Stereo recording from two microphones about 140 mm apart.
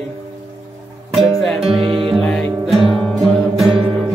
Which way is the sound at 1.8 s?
40° right (ahead or behind).